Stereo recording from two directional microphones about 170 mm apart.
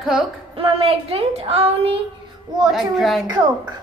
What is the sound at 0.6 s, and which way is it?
Speech, 35° right (ahead or behind).